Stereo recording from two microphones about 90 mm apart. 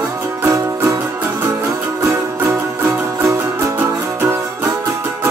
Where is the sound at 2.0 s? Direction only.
30° right (ahead or behind).